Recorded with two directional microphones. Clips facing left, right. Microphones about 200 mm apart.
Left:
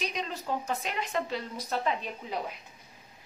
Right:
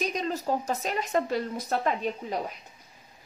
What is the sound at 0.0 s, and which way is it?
Speech, 45° right (ahead or behind).